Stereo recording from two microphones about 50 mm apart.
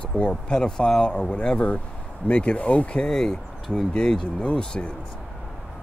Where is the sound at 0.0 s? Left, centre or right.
Left.